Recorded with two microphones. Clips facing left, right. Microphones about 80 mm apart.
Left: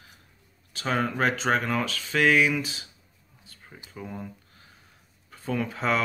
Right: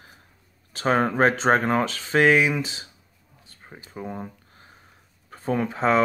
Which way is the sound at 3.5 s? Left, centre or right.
Right.